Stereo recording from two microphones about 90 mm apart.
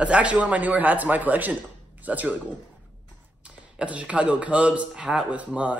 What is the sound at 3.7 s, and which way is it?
Speech, 15° right (ahead or behind).